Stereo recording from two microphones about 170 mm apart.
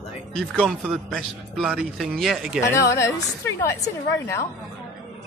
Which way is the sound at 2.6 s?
15° left (ahead or behind).